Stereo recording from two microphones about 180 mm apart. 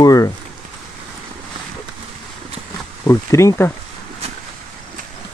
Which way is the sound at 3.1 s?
15° left (ahead or behind).